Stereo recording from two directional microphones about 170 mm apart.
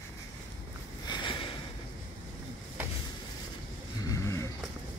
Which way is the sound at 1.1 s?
30° left (ahead or behind).